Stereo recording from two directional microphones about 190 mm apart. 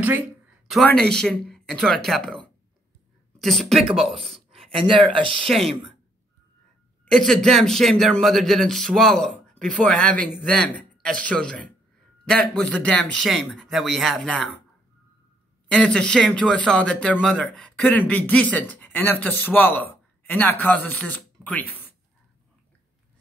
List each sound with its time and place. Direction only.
0.7 s speech: centre (ahead or behind)
3.8 s speech: 30° right (ahead or behind)
4.1 s speech: centre (ahead or behind)
4.7 s speech: 25° right (ahead or behind)
7.1 s speech: 5° left (ahead or behind)
15.7 s speech: 5° left (ahead or behind)